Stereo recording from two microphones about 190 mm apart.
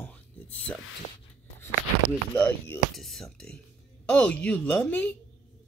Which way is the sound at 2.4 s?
10° left (ahead or behind).